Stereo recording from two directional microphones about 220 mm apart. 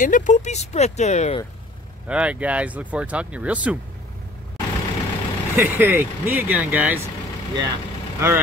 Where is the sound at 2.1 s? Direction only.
5° right (ahead or behind).